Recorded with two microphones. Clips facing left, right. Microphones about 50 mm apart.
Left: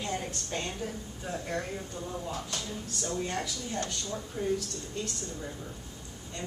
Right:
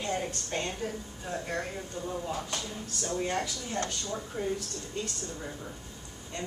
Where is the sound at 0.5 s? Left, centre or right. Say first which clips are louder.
Even; centre.